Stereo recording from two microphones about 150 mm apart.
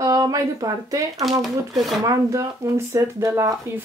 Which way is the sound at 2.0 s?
20° right (ahead or behind).